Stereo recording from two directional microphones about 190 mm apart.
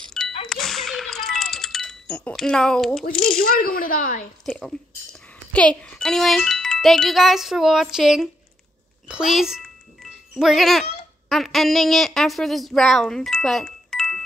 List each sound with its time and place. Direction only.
0.2 s ding: centre (ahead or behind)
0.5 s a sound: centre (ahead or behind)
3.1 s speech: 50° left (ahead or behind)
4.5 s a child's voice: 5° left (ahead or behind)